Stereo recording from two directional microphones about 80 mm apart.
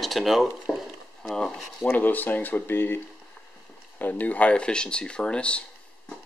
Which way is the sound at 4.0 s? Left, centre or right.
Left.